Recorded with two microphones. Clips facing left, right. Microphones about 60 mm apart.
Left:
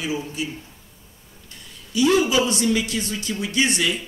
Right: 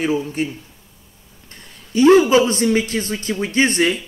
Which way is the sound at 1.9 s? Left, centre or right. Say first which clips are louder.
Right 7 dB; right.